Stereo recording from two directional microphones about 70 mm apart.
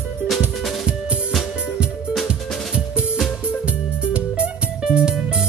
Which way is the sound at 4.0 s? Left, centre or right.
Centre.